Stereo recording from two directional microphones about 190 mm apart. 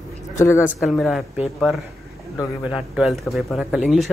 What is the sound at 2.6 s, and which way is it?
Speech, centre (ahead or behind).